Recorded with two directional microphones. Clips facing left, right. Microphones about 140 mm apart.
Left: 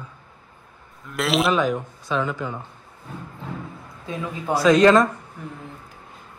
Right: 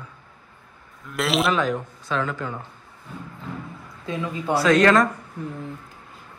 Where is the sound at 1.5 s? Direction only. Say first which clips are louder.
Left 2 dB; 15° left (ahead or behind).